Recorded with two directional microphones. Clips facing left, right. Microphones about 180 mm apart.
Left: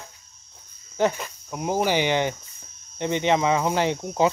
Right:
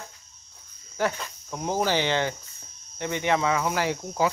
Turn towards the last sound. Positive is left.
turn(degrees=20)  # may be behind; listen again after turning